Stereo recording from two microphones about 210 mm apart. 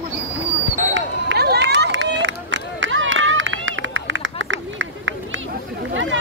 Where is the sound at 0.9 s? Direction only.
55° right (ahead or behind).